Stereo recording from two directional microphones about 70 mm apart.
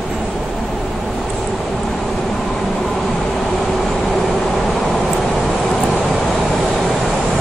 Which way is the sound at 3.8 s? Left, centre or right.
Centre.